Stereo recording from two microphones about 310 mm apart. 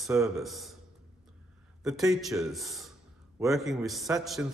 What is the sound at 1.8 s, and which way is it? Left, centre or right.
A man's voice, centre.